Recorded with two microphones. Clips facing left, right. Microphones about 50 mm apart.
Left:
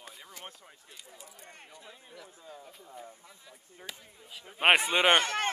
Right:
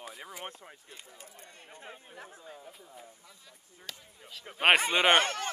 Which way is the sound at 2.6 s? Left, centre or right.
Centre.